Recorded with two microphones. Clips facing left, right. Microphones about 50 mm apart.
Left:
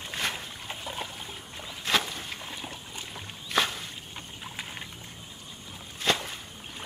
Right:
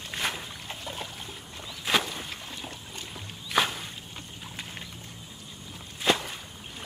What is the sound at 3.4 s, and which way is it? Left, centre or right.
Walk, centre.